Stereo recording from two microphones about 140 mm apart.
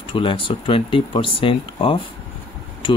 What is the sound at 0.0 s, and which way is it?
Speech, 40° left (ahead or behind).